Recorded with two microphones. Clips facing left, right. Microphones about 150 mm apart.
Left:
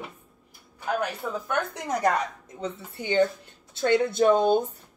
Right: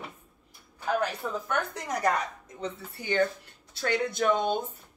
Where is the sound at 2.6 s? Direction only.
25° left (ahead or behind).